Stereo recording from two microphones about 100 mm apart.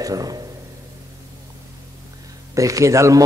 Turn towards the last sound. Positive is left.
turn(degrees=-30)  # may be behind; listen again after turning